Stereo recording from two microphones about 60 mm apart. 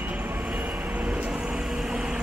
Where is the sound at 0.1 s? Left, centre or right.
Right.